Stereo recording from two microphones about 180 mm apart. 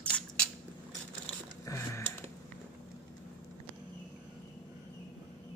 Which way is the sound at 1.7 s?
15° left (ahead or behind).